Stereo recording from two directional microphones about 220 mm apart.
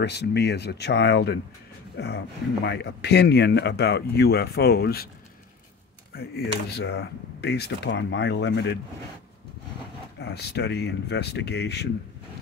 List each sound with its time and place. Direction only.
0.0 s speech: 50° left (ahead or behind)
6.1 s speech: 45° left (ahead or behind)
10.2 s speech: 50° left (ahead or behind)